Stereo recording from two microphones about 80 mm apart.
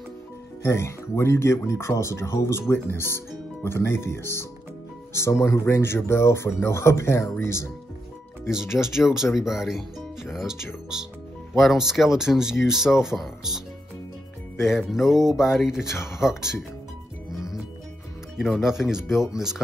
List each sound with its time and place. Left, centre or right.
0.6 s speech: left
8.7 s speech: centre
14.6 s speech: centre
17.3 s music: centre
18.4 s speech: centre